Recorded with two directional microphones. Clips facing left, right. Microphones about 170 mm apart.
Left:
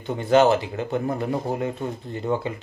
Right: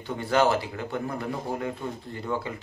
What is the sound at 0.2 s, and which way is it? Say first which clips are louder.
Speech: left 6 dB; 20° left (ahead or behind).